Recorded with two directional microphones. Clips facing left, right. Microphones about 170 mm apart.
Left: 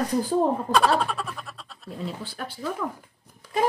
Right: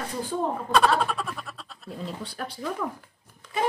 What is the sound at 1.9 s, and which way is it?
Speech, centre (ahead or behind).